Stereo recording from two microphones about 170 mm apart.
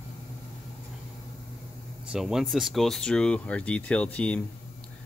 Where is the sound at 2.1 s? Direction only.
Centre (ahead or behind).